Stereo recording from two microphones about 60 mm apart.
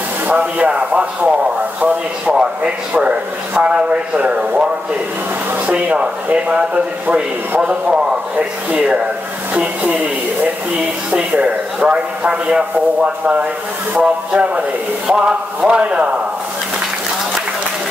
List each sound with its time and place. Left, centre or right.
0.3 s a man's voice: centre
2.3 s a man's voice: centre
5.7 s a man's voice: right
11.1 s a man's voice: right